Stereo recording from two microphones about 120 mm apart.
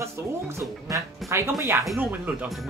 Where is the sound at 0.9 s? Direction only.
25° right (ahead or behind).